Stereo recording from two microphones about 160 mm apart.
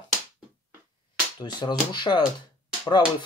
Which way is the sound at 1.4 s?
30° left (ahead or behind).